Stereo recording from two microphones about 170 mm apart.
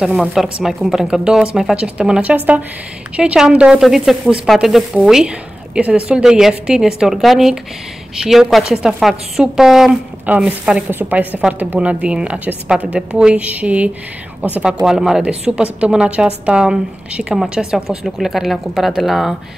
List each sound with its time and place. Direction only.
0.0 s a woman's voice: centre (ahead or behind)